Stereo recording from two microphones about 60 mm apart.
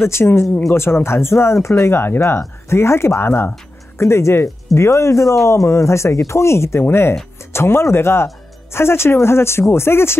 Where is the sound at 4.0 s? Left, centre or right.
Left.